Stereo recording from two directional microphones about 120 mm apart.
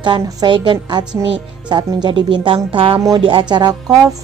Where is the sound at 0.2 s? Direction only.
30° right (ahead or behind).